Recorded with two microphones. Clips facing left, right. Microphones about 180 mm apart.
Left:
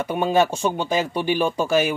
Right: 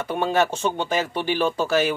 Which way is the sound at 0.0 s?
15° left (ahead or behind).